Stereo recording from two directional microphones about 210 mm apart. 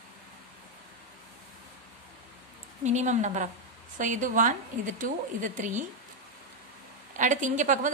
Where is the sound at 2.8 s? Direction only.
35° right (ahead or behind).